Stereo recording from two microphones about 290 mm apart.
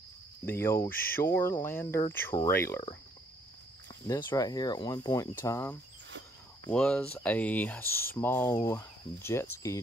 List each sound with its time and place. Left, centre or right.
0.5 s speech: centre
4.1 s speech: centre
6.0 s a sound: right
6.7 s speech: centre